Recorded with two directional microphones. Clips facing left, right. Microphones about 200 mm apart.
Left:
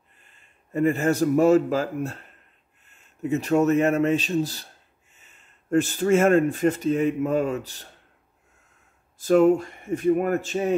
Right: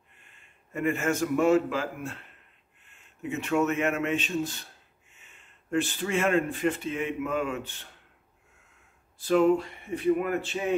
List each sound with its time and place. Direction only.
0.2 s a man's voice: 35° left (ahead or behind)
9.2 s speech: 45° left (ahead or behind)